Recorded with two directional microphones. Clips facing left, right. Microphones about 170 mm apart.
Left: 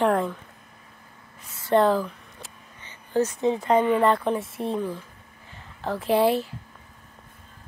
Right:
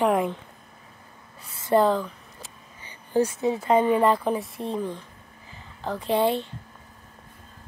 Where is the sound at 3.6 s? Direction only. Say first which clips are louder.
Right 1 dB; 10° right (ahead or behind).